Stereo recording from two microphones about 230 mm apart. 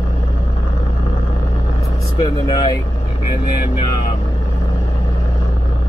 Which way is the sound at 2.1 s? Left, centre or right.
Centre.